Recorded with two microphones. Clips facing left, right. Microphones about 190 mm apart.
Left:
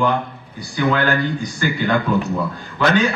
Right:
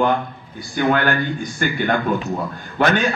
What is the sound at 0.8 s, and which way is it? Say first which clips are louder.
A man's voice: even; 55° right (ahead or behind).